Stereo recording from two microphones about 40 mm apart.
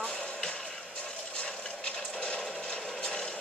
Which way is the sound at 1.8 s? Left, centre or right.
Left.